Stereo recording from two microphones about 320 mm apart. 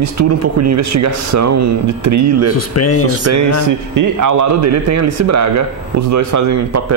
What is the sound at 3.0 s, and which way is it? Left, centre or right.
Speech, right.